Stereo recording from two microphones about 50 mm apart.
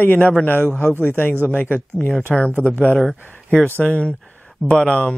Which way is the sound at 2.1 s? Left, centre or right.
Centre.